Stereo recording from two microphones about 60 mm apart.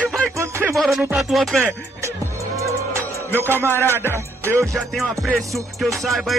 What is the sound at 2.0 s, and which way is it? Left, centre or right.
Music, right.